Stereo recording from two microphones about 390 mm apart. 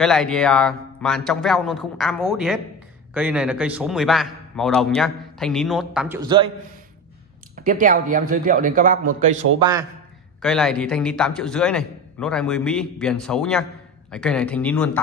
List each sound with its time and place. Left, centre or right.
0.0 s a man's voice: centre
7.5 s a man's voice: right
10.4 s a man's voice: centre